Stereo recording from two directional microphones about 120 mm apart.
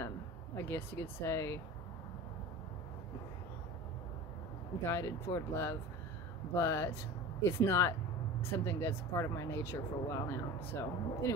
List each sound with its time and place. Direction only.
0.6 s speech: 20° left (ahead or behind)
4.8 s speech: 25° left (ahead or behind)